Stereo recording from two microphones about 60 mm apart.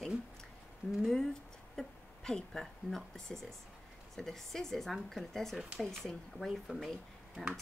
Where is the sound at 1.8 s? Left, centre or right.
Centre.